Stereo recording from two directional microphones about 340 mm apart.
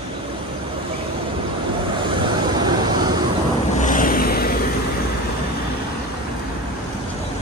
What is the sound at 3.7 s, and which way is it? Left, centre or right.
Vehicle, left.